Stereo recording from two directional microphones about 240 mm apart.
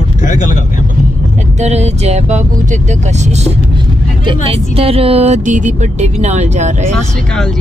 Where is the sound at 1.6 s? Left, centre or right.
Right.